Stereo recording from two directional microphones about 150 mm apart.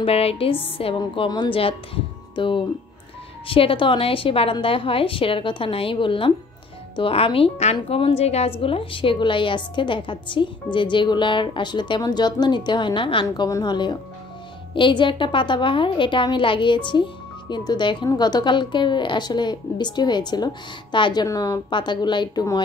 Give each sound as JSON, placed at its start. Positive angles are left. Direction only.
{"t": 0.0, "sound": "a woman's voice", "side_deg": 40}